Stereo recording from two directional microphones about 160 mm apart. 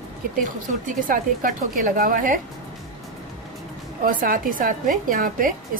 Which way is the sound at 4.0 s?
60° right (ahead or behind).